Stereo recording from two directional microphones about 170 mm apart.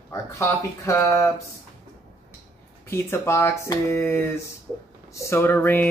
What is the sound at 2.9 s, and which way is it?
Speech, 15° left (ahead or behind).